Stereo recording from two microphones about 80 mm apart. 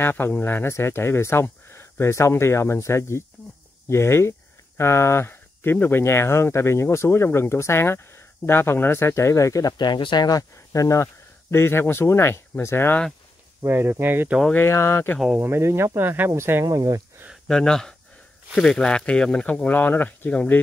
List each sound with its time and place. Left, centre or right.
0.0 s speech: left
10.5 s speech: left
11.5 s speech: left
13.6 s speech: right
14.5 s speech: left
15.3 s speech: right
16.6 s speech: right
17.5 s speech: centre